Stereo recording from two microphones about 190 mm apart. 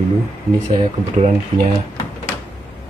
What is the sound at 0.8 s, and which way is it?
Speech, 30° right (ahead or behind).